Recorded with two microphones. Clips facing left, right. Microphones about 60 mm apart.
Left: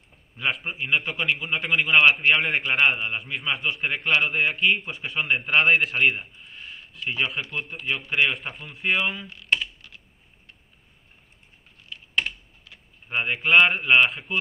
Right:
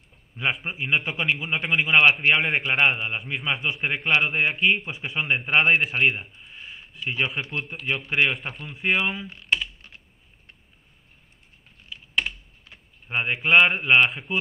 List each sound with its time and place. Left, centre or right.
0.4 s a man's voice: centre
8.7 s a man's voice: centre
9.5 s computer keyboard: centre
11.9 s typing: centre
13.1 s a man's voice: centre